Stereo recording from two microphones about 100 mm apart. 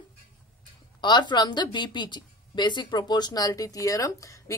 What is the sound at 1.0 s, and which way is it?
A woman's voice, 50° left (ahead or behind).